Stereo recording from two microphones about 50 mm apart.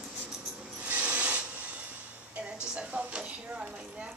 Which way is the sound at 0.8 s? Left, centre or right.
Right.